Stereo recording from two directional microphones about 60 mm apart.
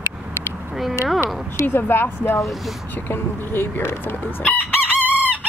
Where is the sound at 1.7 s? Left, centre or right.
Left.